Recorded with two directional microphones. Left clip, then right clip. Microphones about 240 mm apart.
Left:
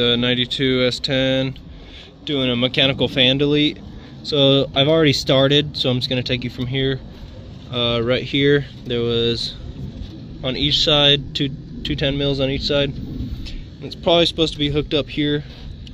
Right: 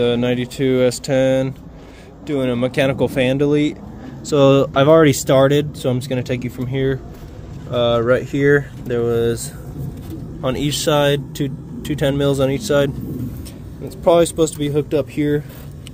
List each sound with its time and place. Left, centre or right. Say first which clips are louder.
0.0 s speech: even; centre
1.2 s speech: right 3 dB; centre
4.4 s speech: right 3 dB; right; by 9.5 s centre
10.4 s speech: left 2 dB; centre
12.0 s speech: right 4 dB; right
14.0 s speech: right 2 dB; centre